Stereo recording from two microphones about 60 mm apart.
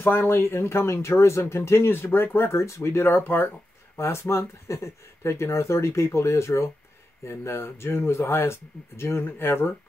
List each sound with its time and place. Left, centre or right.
0.0 s speech: left
2.5 s speech: left
3.1 s speech: left
3.9 s speech: left